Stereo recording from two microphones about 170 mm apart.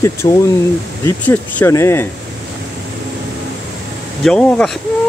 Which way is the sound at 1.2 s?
10° left (ahead or behind).